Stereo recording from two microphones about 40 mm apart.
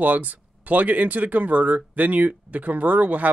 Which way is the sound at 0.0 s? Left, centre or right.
Right.